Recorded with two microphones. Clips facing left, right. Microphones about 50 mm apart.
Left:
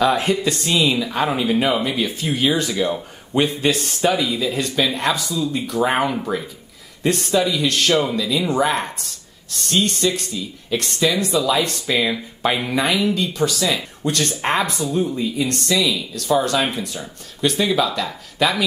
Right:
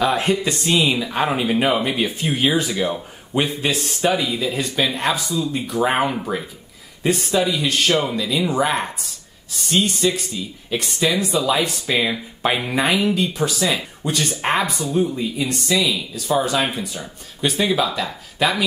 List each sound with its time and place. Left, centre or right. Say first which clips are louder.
0.0 s a man's voice: left 1 dB; centre